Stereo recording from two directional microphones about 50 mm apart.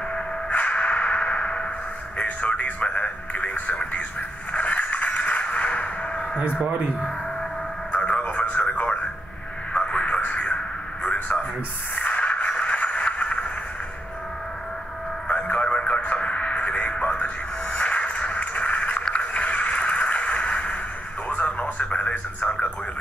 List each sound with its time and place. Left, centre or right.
0.5 s whip: left
2.1 s speech: left
4.5 s a sound: left
7.9 s radio: left
11.1 s speech: left
11.9 s a sound: left
15.2 s radio: left
19.0 s a sound: left
21.3 s radio: left